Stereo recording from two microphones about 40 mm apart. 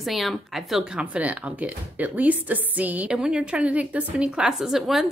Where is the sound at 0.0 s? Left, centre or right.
Centre.